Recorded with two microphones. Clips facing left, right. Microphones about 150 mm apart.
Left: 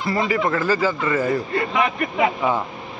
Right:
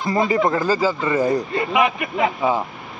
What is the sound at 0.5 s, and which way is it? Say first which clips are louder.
A man's voice: right 1 dB; 15° right (ahead or behind).